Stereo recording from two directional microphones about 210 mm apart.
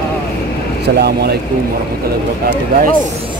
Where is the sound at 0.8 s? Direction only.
50° right (ahead or behind).